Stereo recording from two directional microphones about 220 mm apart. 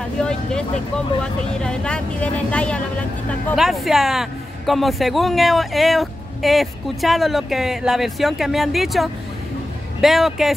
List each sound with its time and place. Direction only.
0.2 s a man's voice: 5° left (ahead or behind)